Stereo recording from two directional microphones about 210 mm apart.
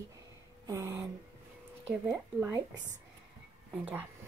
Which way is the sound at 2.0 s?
15° right (ahead or behind).